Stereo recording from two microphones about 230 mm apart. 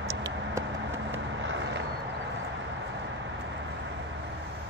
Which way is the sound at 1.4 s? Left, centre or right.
Right.